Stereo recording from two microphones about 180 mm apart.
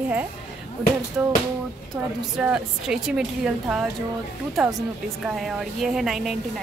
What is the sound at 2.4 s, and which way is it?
A woman's voice, 5° right (ahead or behind).